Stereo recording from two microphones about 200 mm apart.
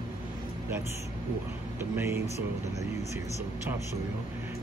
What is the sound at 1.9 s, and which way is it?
Speech, 15° right (ahead or behind).